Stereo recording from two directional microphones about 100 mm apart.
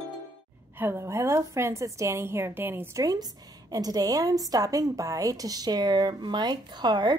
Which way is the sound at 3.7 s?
40° right (ahead or behind).